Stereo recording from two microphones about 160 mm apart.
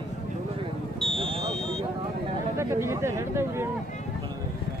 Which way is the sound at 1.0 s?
Centre (ahead or behind).